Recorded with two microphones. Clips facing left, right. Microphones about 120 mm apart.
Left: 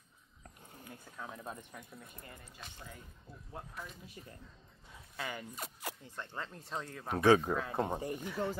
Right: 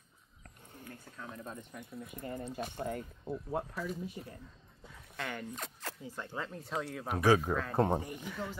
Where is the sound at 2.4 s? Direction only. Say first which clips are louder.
Right 14 dB; 55° right (ahead or behind).